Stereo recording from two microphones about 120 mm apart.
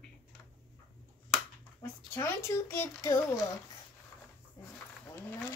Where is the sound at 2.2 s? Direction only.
25° left (ahead or behind).